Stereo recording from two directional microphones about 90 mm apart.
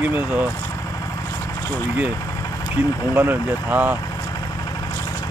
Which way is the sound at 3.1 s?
20° right (ahead or behind).